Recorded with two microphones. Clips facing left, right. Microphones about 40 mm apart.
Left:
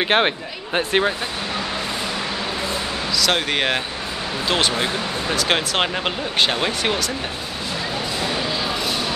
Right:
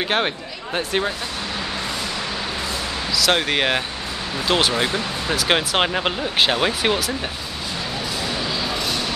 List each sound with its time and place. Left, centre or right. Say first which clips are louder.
0.0 s speech: left 3 dB; left
3.2 s speech: right 2 dB; centre